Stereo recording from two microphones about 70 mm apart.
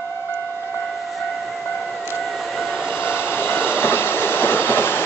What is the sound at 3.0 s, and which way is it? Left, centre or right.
Train, left.